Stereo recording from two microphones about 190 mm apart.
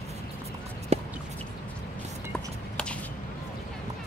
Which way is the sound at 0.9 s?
35° right (ahead or behind).